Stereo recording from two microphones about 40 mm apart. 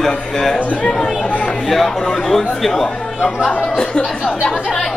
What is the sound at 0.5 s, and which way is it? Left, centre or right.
Speech, left.